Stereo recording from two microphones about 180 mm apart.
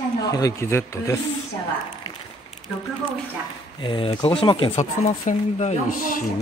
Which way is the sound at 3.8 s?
30° left (ahead or behind).